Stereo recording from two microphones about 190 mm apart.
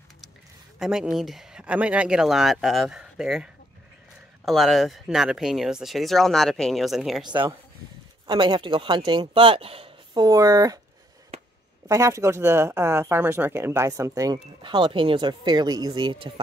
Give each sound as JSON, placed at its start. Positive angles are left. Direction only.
{"t": 0.7, "sound": "speech", "side_deg": -5}
{"t": 4.5, "sound": "speech", "side_deg": 0}
{"t": 7.2, "sound": "speech", "side_deg": -25}
{"t": 11.9, "sound": "speech", "side_deg": -15}